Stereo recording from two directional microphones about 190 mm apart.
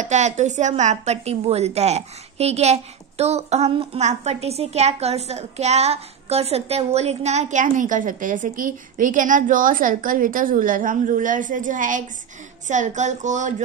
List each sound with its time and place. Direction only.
0.0 s a woman's voice: 40° right (ahead or behind)